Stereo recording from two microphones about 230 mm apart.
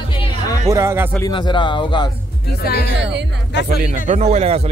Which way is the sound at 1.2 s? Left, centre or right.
Centre.